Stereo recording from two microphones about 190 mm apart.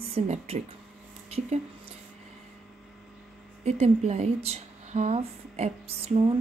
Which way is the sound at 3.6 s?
35° right (ahead or behind).